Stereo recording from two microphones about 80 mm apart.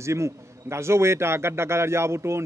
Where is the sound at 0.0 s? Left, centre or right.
Right.